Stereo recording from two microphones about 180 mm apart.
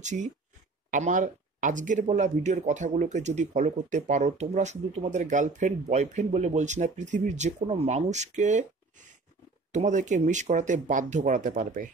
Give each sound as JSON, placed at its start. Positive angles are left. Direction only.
{"t": 0.0, "sound": "speech", "side_deg": -40}
{"t": 9.7, "sound": "speech", "side_deg": -40}